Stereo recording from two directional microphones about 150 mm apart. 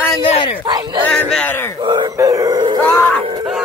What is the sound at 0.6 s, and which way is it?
Speech, 30° right (ahead or behind).